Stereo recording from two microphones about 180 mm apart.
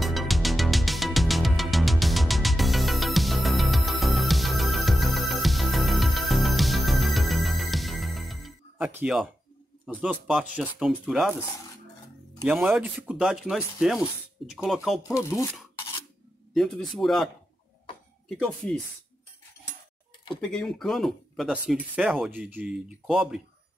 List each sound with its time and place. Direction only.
0.0 s music: centre (ahead or behind)
9.8 s speech: 5° right (ahead or behind)
12.5 s speech: 10° right (ahead or behind)
15.1 s speech: 15° left (ahead or behind)
16.5 s speech: 5° left (ahead or behind)
20.3 s speech: 5° left (ahead or behind)